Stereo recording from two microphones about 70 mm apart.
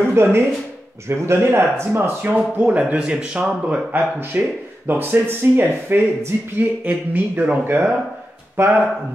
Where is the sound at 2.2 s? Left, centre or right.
Centre.